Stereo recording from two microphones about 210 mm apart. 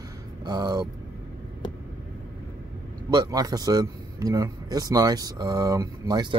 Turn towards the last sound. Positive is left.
turn(degrees=-20)  # may be behind; listen again after turning